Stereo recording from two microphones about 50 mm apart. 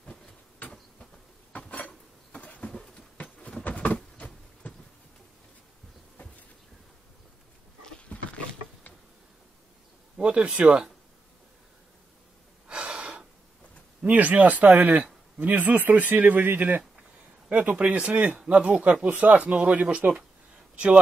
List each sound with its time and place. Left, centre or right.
1.7 s dishes: left
2.3 s insect: left
3.4 s a sound: left
8.1 s a sound: left
10.1 s speech: centre
12.6 s gasp: centre
14.0 s a man's voice: right
20.7 s speech: right